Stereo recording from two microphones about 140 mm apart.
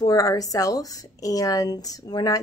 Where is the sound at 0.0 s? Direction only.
25° left (ahead or behind).